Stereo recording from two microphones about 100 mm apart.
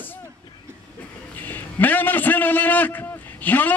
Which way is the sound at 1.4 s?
15° left (ahead or behind).